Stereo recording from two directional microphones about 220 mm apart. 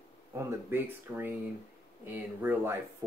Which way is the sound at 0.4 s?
10° right (ahead or behind).